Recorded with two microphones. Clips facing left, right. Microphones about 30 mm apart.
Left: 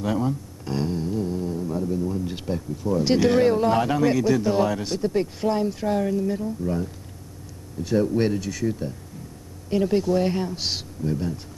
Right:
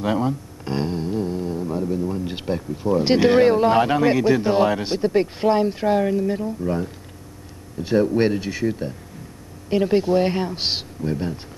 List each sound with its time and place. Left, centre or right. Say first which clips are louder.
0.0 s speech: right 3 dB; right